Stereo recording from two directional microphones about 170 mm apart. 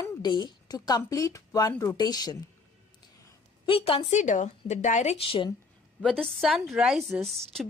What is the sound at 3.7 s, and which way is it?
A woman's voice, 30° left (ahead or behind).